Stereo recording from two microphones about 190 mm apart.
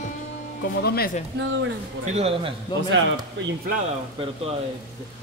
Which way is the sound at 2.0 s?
35° right (ahead or behind).